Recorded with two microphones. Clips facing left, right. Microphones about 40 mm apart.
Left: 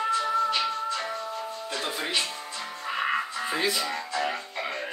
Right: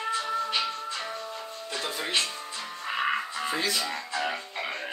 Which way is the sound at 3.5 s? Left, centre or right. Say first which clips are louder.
Left 1 dB; centre.